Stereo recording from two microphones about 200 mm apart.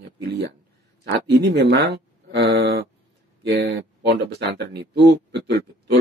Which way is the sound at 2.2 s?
50° right (ahead or behind).